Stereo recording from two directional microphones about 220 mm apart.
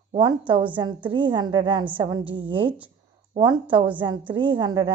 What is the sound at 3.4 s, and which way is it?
A woman's voice, 20° right (ahead or behind).